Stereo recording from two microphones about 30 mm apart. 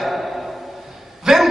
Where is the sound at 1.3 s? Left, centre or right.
Centre.